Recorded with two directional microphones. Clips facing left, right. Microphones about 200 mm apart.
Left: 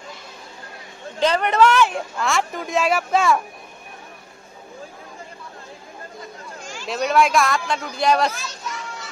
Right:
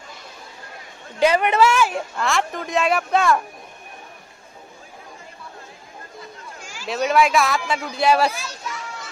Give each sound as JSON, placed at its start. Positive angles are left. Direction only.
{"t": 1.2, "sound": "speech", "side_deg": -10}
{"t": 6.6, "sound": "speech", "side_deg": -5}